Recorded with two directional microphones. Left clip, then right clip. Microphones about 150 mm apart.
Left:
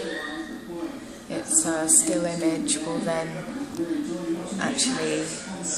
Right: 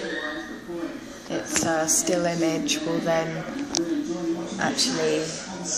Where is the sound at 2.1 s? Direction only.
20° right (ahead or behind).